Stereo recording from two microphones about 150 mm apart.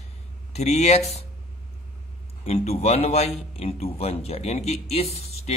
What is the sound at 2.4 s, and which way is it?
A man's voice, 45° left (ahead or behind).